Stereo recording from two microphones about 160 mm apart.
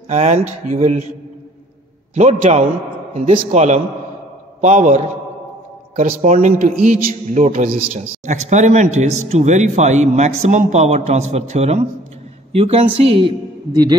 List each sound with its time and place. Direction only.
0.1 s a man's voice: 45° right (ahead or behind)
2.1 s a man's voice: 45° right (ahead or behind)